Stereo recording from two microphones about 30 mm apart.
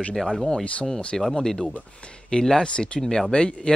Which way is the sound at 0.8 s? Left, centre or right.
Centre.